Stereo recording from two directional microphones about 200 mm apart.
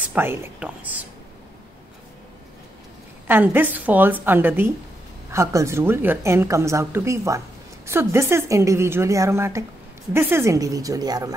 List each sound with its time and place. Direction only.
0.1 s a woman's voice: 10° right (ahead or behind)
3.3 s a woman's voice: 10° right (ahead or behind)